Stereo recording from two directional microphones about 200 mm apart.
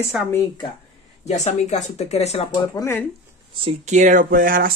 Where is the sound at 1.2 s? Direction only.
35° left (ahead or behind).